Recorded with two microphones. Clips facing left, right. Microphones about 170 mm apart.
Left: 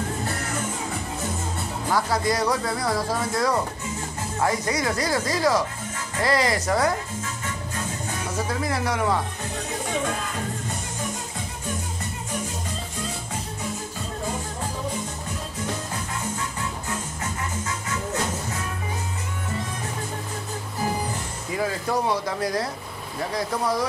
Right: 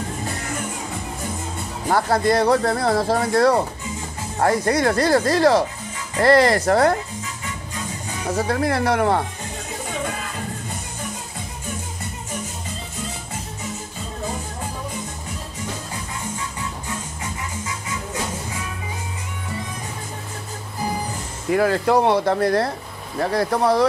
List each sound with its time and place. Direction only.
1.9 s speech: 55° right (ahead or behind)
8.5 s speech: 60° right (ahead or behind)
17.2 s music: 10° right (ahead or behind)
21.5 s speech: 70° right (ahead or behind)